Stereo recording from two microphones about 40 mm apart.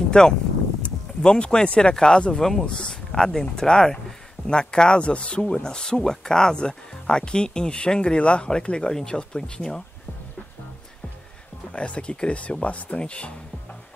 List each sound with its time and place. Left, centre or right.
0.2 s speech: left
3.1 s speech: centre
11.7 s speech: left